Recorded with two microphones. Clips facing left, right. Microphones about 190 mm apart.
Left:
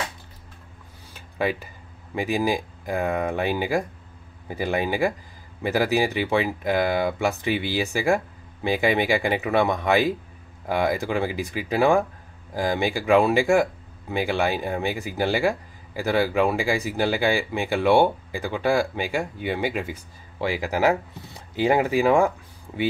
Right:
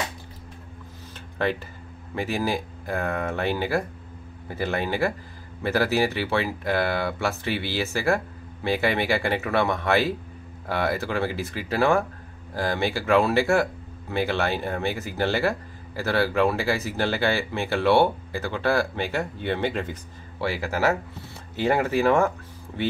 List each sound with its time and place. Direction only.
1.1 s music: 10° left (ahead or behind)
2.1 s speech: 15° left (ahead or behind)